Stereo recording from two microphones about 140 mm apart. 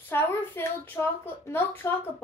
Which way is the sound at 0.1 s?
15° left (ahead or behind).